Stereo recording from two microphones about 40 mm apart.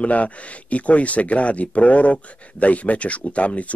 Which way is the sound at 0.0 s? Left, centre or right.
Left.